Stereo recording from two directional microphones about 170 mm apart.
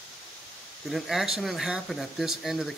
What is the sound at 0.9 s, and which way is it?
A man's voice, centre (ahead or behind).